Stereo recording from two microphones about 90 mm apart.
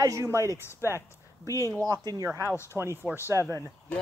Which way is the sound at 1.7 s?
40° right (ahead or behind).